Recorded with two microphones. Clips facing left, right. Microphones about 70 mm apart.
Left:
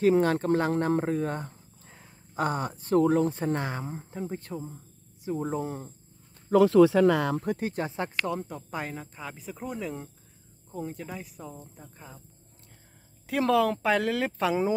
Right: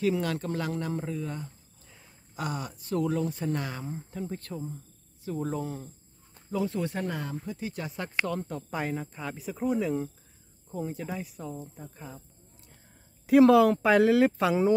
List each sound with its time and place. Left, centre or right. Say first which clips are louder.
0.0 s speech: left 6 dB; left
2.3 s speech: left 6 dB; left
6.5 s speech: left 12 dB; left
7.7 s speech: left 5 dB; left
8.3 s speech: even; centre
13.3 s speech: right 6 dB; centre